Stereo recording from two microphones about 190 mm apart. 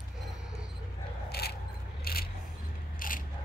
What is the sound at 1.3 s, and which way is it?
Scrape, 60° left (ahead or behind).